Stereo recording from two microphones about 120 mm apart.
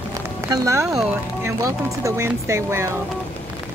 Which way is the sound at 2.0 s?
25° right (ahead or behind).